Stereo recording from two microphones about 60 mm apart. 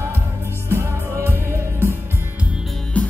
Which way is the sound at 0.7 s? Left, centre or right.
Right.